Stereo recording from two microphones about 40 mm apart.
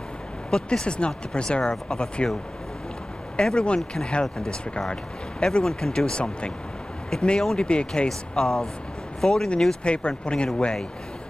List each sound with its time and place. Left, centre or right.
0.5 s speech: centre
3.3 s speech: left
8.1 s speech: centre